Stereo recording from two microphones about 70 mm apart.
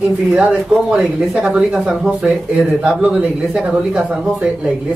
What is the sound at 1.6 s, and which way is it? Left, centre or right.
A man's voice, centre.